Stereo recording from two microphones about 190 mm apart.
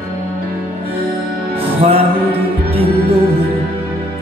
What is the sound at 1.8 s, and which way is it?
Music, 30° right (ahead or behind).